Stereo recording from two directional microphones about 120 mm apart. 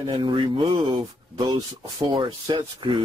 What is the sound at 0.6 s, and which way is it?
Speech, 55° right (ahead or behind).